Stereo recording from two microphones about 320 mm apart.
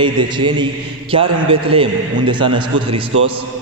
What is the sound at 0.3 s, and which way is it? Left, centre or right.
A man's voice, centre.